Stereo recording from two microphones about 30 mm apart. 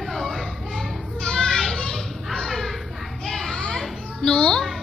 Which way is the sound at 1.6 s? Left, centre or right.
Centre.